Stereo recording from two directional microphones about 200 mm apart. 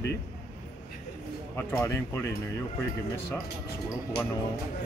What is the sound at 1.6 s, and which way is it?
Speech, 10° left (ahead or behind).